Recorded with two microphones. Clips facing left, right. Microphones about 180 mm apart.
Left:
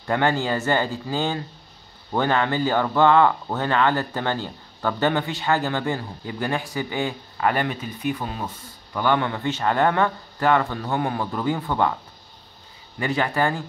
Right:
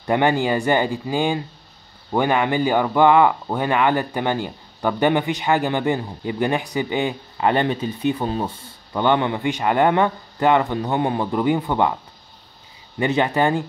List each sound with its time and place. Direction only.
0.0 s speech: 15° right (ahead or behind)
13.0 s speech: 20° right (ahead or behind)